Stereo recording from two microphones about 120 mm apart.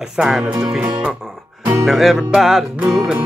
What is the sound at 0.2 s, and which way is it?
Music, 5° right (ahead or behind).